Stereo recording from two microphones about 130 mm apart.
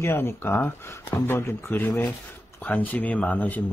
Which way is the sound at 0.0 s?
20° left (ahead or behind).